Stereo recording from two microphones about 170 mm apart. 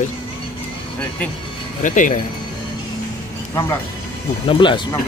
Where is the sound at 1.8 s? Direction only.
50° left (ahead or behind).